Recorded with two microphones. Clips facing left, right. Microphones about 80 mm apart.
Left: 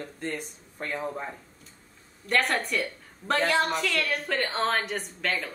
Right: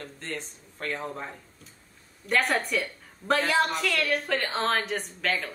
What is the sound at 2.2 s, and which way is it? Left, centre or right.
A woman's voice, centre.